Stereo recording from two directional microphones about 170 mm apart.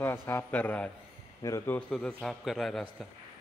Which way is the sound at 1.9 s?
5° left (ahead or behind).